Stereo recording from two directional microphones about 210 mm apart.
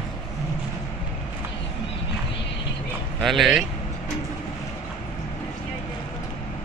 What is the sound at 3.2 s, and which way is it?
Speech, centre (ahead or behind).